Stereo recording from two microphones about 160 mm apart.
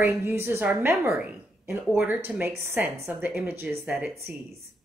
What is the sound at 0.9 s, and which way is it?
Speech, centre (ahead or behind).